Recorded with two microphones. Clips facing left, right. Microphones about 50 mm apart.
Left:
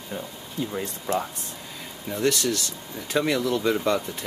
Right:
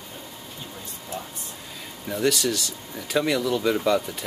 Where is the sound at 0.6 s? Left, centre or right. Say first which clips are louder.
Left 14 dB; left.